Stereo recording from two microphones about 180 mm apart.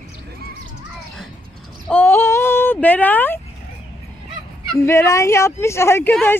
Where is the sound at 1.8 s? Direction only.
10° left (ahead or behind).